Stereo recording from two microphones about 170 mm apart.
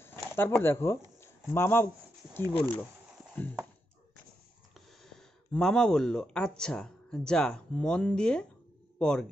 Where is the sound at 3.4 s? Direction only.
10° left (ahead or behind).